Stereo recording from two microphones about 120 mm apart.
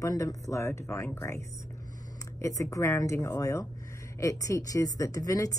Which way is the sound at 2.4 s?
25° left (ahead or behind).